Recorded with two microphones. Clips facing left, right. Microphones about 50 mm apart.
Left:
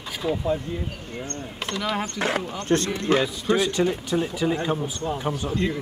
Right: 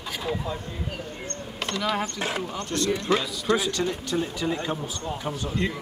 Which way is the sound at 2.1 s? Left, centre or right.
Left.